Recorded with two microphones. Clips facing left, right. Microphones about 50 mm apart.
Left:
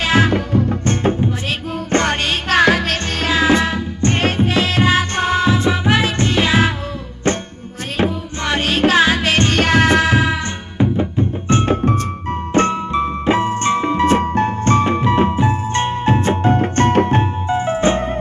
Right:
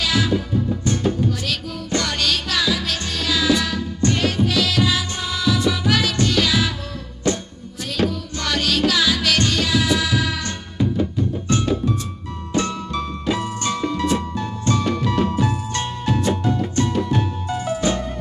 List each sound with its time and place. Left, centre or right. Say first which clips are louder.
0.0 s music: left 5 dB; left
1.2 s music: left 3 dB; left